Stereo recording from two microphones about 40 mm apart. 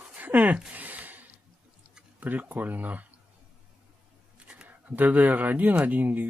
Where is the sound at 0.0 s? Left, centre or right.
Right.